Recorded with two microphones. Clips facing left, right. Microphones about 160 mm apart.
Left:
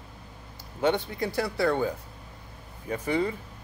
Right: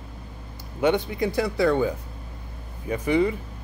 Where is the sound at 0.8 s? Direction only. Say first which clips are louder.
Right 4 dB; 15° right (ahead or behind).